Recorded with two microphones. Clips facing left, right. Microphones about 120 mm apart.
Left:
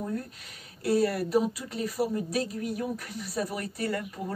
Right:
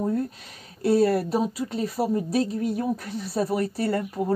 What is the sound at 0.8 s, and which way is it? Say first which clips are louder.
Speech: right 5 dB; 30° right (ahead or behind).